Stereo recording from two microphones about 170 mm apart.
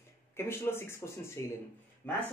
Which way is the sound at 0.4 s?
15° left (ahead or behind).